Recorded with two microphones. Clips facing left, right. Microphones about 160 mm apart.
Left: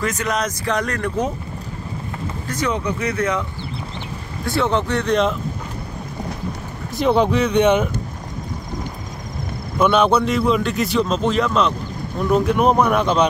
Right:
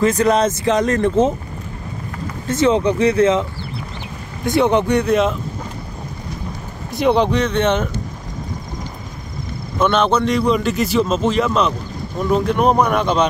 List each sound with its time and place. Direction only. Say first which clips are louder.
0.0 s speech: right 8 dB; 30° right (ahead or behind)
2.4 s speech: right 8 dB; 25° right (ahead or behind)
4.5 s a man's voice: right 5 dB; 20° right (ahead or behind)
7.0 s speech: right 1 dB; centre (ahead or behind)
9.8 s a man's voice: even; 10° left (ahead or behind)